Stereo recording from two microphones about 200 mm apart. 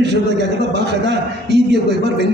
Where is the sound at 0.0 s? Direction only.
60° right (ahead or behind).